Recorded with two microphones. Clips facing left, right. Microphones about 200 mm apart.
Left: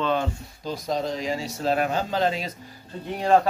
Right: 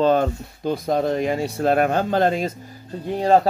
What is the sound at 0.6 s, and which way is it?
Speech, 55° right (ahead or behind).